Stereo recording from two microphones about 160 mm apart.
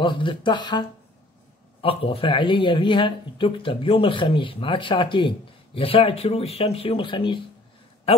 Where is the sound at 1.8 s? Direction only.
35° left (ahead or behind).